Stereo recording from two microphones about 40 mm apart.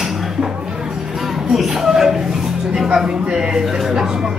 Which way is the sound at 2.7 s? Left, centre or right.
Centre.